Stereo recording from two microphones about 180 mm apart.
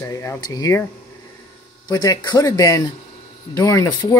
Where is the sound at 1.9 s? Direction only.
20° left (ahead or behind).